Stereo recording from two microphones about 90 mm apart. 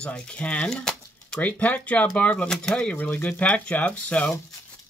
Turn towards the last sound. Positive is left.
turn(degrees=15)  # may be behind; listen again after turning